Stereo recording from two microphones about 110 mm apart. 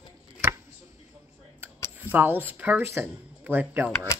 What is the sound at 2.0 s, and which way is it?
Speech, 15° right (ahead or behind).